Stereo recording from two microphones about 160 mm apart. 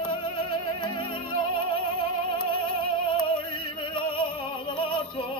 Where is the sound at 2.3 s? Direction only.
35° left (ahead or behind).